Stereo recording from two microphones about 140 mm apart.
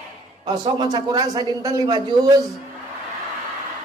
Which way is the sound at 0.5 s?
30° right (ahead or behind).